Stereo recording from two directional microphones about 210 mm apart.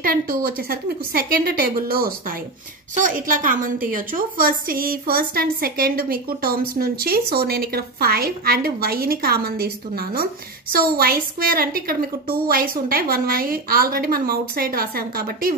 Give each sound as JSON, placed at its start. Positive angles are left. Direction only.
{"t": 0.0, "sound": "a woman's voice", "side_deg": -45}